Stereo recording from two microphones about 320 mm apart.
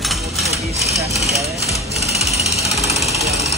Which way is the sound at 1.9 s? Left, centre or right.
Centre.